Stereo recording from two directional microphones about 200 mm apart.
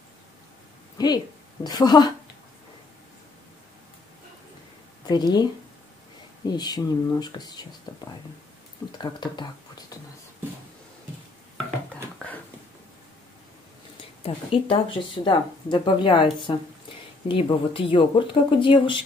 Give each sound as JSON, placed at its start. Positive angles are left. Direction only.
{"t": 0.9, "sound": "a woman's voice", "side_deg": 20}
{"t": 5.0, "sound": "speech", "side_deg": 20}
{"t": 12.2, "sound": "a sound", "side_deg": 5}
{"t": 14.2, "sound": "speech", "side_deg": 25}